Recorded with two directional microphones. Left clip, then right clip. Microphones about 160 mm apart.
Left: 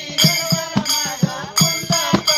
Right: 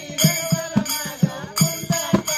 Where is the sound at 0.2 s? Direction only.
20° left (ahead or behind).